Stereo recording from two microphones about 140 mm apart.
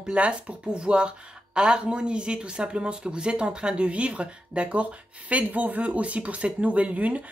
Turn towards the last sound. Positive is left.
turn(degrees=-10)  # may be behind; listen again after turning